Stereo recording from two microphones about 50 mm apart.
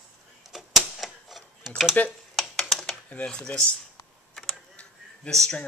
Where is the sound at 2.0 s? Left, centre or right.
Left.